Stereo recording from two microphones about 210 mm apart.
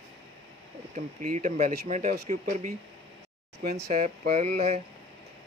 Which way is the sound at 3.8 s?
35° right (ahead or behind).